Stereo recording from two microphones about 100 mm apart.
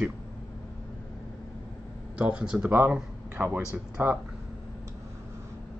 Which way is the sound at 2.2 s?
10° right (ahead or behind).